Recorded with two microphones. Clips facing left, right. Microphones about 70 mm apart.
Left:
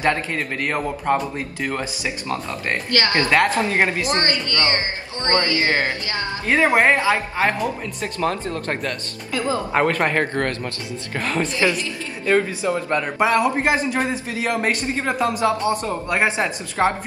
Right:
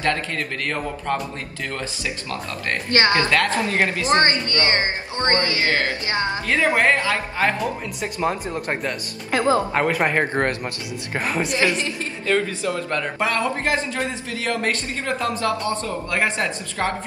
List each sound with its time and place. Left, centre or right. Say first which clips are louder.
0.0 s a man's voice: left 2 dB; centre
2.9 s speech: right 2 dB; right
3.3 s a man's voice: left 2 dB; centre
4.0 s speech: right 3 dB; right
5.6 s a man's voice: left 1 dB; left
6.0 s speech: right 3 dB; right
6.4 s a man's voice: left 4 dB; left
8.2 s speech: left 1 dB; centre
9.8 s speech: even; centre
10.3 s speech: right 1 dB; right
12.3 s a man's voice: left 3 dB; centre